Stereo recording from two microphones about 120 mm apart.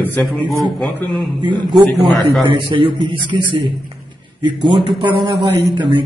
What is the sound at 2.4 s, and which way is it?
A man's voice, 45° right (ahead or behind).